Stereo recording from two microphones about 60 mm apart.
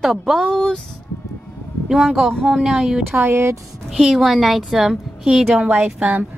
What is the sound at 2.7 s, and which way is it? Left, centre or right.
Speech, centre.